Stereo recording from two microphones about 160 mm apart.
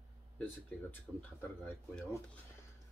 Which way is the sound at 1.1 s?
5° right (ahead or behind).